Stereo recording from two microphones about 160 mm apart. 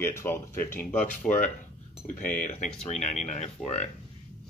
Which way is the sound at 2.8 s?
45° left (ahead or behind).